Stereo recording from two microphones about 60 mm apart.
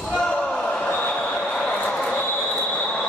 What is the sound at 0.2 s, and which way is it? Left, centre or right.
Basketball bounce, centre.